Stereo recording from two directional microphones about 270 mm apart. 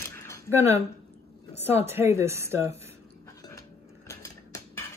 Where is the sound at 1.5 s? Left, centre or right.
Left.